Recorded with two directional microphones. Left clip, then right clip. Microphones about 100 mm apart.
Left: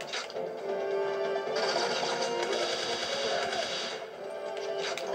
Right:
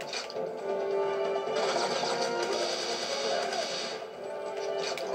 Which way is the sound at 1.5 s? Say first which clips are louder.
Left 1 dB; 35° left (ahead or behind).